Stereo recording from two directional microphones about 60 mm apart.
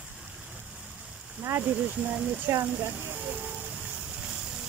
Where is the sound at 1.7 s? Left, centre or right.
Right.